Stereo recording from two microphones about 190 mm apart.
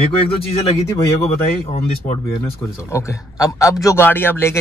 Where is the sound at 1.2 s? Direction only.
35° left (ahead or behind).